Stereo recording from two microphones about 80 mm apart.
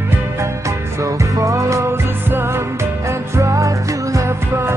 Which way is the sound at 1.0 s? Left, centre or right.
Right.